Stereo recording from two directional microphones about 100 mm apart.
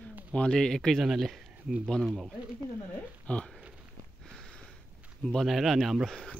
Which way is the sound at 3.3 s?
10° left (ahead or behind).